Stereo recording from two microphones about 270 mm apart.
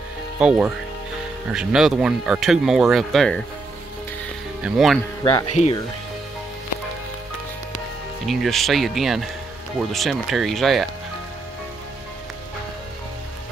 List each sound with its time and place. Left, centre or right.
0.4 s speech: centre
4.6 s speech: centre
5.5 s speech: left
8.3 s speech: centre